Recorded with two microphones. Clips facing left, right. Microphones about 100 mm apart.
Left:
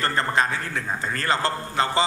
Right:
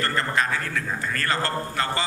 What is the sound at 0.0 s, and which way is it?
A man's voice, 25° left (ahead or behind).